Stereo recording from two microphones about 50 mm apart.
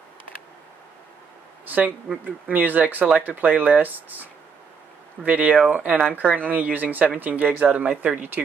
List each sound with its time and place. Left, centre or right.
2.2 s speech: right